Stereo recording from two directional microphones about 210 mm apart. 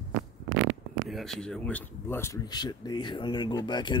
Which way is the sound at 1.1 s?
Centre (ahead or behind).